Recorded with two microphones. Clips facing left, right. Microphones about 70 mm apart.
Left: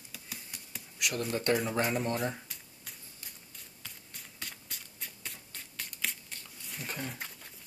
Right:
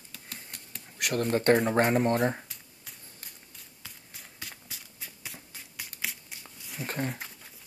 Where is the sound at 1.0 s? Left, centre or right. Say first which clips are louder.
Right 6 dB; right.